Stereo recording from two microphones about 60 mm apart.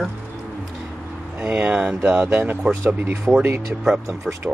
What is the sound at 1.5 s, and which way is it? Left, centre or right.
Speech, right.